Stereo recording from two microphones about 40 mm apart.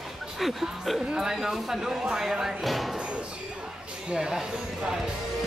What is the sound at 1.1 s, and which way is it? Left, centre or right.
Speech, centre.